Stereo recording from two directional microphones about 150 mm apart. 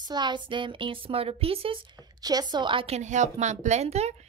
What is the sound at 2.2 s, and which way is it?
A woman's voice, 25° right (ahead or behind).